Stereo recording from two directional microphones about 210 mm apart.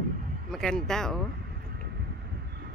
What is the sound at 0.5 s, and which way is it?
Speech, centre (ahead or behind).